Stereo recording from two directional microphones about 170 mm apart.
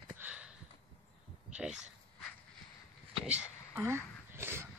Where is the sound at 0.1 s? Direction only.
10° right (ahead or behind).